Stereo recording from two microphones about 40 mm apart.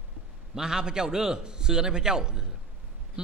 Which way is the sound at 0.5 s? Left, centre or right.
Centre.